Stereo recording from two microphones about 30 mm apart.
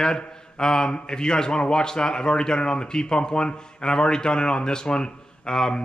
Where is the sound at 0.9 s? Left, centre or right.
Left.